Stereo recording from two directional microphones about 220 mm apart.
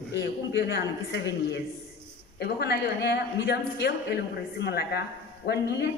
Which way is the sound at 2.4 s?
50° left (ahead or behind).